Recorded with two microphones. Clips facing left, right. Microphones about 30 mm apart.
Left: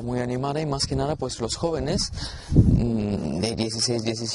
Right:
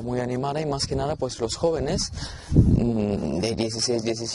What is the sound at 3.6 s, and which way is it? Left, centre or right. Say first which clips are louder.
Speech: right 1 dB; left.